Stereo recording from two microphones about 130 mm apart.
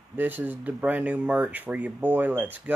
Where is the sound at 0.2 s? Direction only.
15° right (ahead or behind).